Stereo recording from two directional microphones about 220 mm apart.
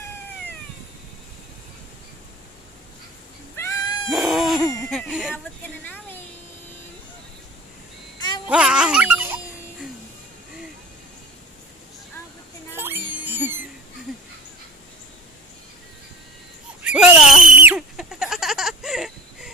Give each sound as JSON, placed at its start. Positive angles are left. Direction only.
{"t": 3.5, "sound": "cat", "side_deg": 15}
{"t": 4.1, "sound": "a sound", "side_deg": 0}
{"t": 4.8, "sound": "speech", "side_deg": 0}
{"t": 8.5, "sound": "music", "side_deg": -5}
{"t": 12.7, "sound": "music", "side_deg": -10}
{"t": 13.2, "sound": "a sound", "side_deg": -10}
{"t": 16.8, "sound": "goat", "side_deg": -5}